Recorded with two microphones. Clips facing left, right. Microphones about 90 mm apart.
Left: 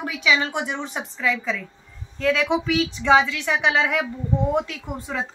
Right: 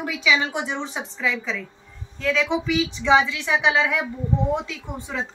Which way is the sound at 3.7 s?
20° right (ahead or behind).